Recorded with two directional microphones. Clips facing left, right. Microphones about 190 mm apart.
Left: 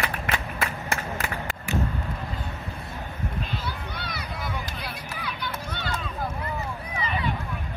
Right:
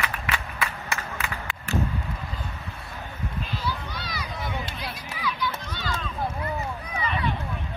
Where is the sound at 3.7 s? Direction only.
60° left (ahead or behind).